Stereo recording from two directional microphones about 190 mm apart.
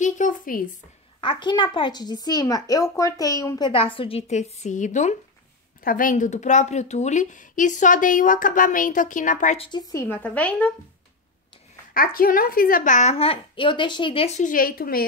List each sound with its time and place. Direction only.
0.0 s a sound: 40° left (ahead or behind)
1.2 s a woman's voice: 25° left (ahead or behind); by 9.7 s 40° left (ahead or behind)
9.7 s a woman's voice: 20° left (ahead or behind)
11.9 s a woman's voice: 50° left (ahead or behind)